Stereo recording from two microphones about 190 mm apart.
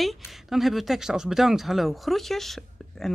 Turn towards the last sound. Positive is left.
turn(degrees=0)  # may be behind; listen again after turning